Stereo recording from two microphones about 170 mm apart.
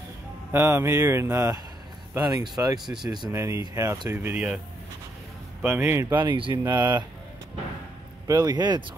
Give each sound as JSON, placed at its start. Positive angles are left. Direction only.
{"t": 0.5, "sound": "speech", "side_deg": -15}
{"t": 2.8, "sound": "speech", "side_deg": 0}
{"t": 3.1, "sound": "speech", "side_deg": -20}
{"t": 5.6, "sound": "speech", "side_deg": -5}
{"t": 6.1, "sound": "speech", "side_deg": -30}
{"t": 8.3, "sound": "speech", "side_deg": -20}